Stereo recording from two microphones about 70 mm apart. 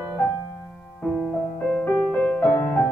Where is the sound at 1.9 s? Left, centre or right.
Left.